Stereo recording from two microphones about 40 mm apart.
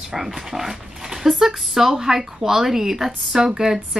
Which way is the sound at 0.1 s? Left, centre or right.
Centre.